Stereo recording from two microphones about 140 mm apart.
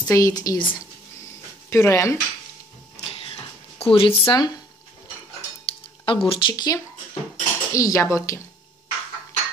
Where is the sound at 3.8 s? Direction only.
40° left (ahead or behind).